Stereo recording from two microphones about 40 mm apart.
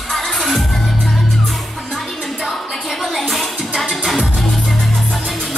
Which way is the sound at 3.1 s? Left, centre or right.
Centre.